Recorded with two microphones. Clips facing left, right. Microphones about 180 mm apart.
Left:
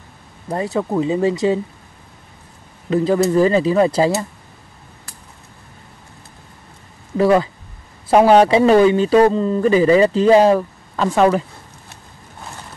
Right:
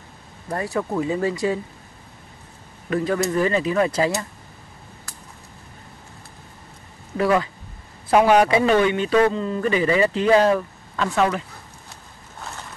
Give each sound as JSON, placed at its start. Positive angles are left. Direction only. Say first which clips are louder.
{"t": 0.5, "sound": "speech", "louder": "left 4 dB", "side_deg": 20}
{"t": 2.9, "sound": "speech", "louder": "left 6 dB", "side_deg": 30}
{"t": 7.2, "sound": "speech", "louder": "left 6 dB", "side_deg": 30}